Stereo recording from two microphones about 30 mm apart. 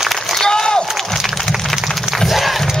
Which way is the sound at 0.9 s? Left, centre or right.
Centre.